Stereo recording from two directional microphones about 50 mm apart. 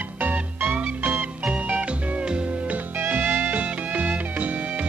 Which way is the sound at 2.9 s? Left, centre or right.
Right.